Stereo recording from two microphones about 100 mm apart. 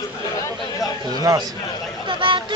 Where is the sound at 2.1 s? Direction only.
55° right (ahead or behind).